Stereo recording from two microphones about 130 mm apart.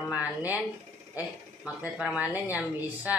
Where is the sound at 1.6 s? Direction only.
10° right (ahead or behind).